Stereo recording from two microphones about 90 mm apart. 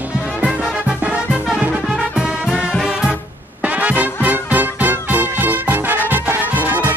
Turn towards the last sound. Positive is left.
turn(degrees=-20)  # may be behind; listen again after turning